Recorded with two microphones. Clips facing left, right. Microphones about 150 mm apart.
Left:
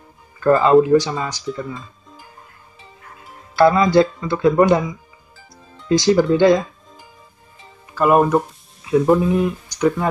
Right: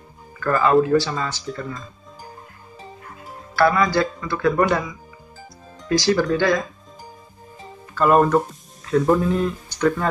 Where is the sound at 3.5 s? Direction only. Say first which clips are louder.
Left 5 dB; 20° left (ahead or behind).